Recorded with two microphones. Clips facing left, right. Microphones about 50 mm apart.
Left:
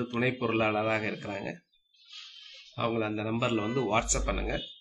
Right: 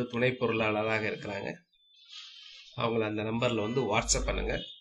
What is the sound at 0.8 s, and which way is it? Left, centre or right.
Speech, centre.